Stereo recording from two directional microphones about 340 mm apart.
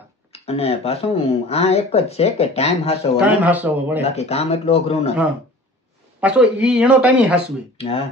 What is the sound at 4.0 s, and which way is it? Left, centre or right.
Speech, centre.